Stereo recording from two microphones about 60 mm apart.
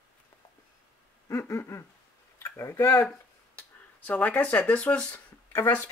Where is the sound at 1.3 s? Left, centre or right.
Left.